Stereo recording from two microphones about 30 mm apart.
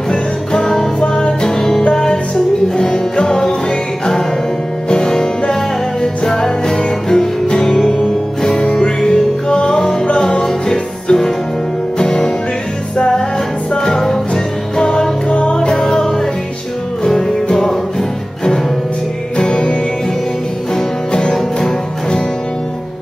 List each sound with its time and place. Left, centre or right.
0.1 s music: left
2.8 s music: left
4.8 s music: left
13.8 s music: centre
15.2 s music: left
15.5 s music: left
19.3 s music: left
20.7 s music: left